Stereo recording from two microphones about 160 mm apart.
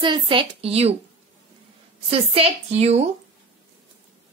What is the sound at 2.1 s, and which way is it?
Speech, 35° right (ahead or behind).